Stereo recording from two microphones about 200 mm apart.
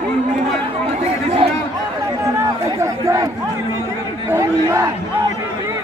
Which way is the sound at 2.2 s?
15° right (ahead or behind).